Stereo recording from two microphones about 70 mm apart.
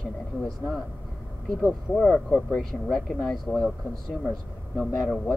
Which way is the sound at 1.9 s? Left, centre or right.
Centre.